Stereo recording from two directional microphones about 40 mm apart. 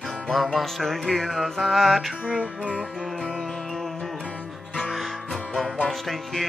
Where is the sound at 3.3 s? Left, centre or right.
Centre.